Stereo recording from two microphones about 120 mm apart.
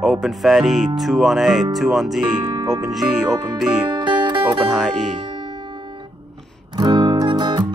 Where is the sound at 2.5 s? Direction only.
30° right (ahead or behind).